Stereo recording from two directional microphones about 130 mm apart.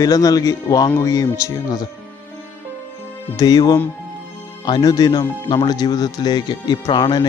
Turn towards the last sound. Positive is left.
turn(degrees=35)  # may be behind; listen again after turning